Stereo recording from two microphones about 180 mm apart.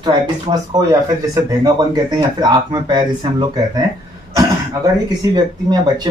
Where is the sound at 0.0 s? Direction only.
25° right (ahead or behind).